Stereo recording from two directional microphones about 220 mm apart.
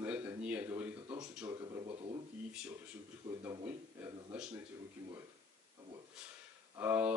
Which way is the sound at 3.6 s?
5° right (ahead or behind).